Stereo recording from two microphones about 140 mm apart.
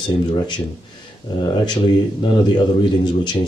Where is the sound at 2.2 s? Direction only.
35° left (ahead or behind).